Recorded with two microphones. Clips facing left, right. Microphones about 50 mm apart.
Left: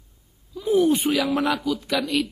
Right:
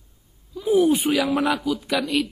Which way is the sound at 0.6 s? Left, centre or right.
Centre.